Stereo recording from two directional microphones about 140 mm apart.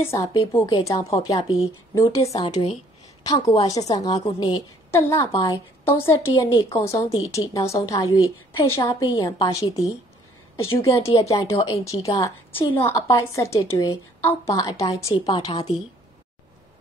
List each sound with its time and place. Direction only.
0.1 s a woman's voice: 20° left (ahead or behind)
2.4 s a woman's voice: 35° left (ahead or behind)